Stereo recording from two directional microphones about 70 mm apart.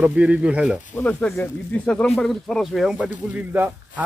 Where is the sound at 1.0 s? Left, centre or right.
Centre.